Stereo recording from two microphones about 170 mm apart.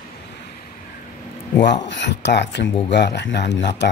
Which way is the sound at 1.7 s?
90° left.